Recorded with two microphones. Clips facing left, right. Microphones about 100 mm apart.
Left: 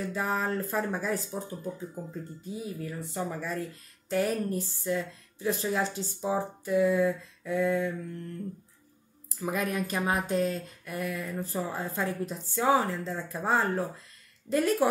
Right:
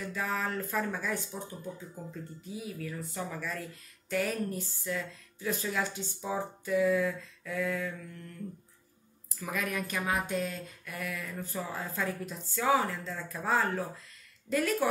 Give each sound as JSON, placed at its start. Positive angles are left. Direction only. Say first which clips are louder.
{"t": 0.0, "sound": "speech", "louder": "left 4 dB", "side_deg": 35}
{"t": 9.4, "sound": "speech", "louder": "left 4 dB", "side_deg": 30}